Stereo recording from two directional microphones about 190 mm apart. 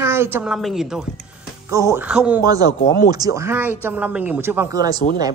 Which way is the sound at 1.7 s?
15° right (ahead or behind).